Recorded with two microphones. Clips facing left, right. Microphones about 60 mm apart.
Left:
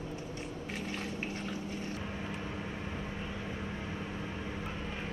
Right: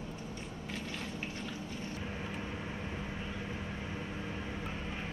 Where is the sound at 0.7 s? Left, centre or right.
Left.